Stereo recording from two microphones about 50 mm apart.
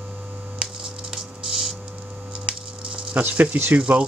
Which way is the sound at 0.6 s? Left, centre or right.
Centre.